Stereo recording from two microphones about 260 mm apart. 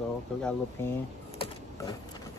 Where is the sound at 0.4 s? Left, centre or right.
Centre.